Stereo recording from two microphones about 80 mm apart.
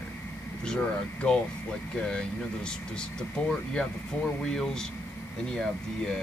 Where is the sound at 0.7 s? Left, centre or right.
Centre.